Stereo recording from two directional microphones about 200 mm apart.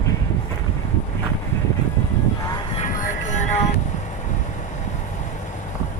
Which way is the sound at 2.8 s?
40° left (ahead or behind).